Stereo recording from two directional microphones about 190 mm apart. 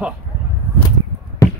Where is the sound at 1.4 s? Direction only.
20° left (ahead or behind).